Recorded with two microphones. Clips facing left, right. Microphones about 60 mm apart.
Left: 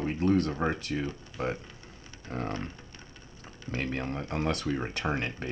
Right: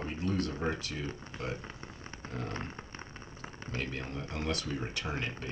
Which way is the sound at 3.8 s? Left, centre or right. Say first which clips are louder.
Left 6 dB; left.